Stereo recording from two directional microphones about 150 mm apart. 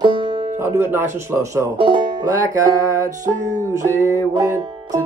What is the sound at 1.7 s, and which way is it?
Speech, 35° right (ahead or behind).